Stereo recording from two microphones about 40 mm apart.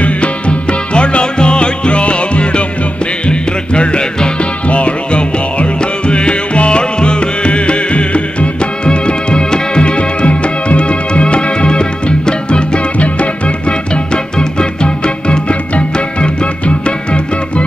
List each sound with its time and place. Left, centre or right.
0.0 s music: left